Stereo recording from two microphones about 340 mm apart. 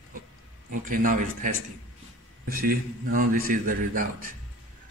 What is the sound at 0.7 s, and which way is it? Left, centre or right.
A man's voice, right.